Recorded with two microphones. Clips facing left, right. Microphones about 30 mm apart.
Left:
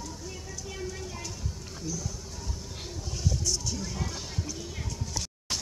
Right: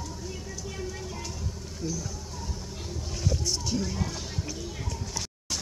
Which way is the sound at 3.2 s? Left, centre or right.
Right.